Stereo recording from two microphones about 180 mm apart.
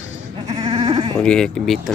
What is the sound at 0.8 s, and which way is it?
Sheep, 35° right (ahead or behind).